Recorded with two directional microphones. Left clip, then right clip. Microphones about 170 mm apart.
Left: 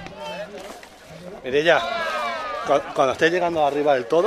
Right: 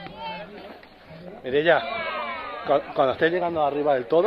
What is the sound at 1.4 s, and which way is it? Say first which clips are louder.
Speech: left 2 dB; 5° left (ahead or behind).